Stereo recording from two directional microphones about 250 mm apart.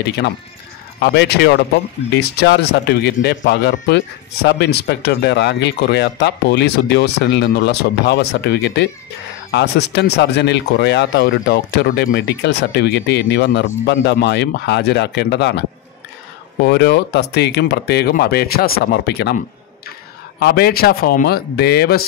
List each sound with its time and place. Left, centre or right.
0.9 s speech: left
16.6 s speech: left